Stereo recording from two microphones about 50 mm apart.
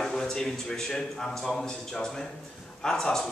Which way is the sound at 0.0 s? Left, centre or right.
Centre.